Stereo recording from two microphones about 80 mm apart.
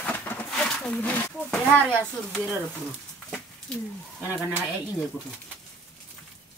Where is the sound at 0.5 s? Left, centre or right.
Centre.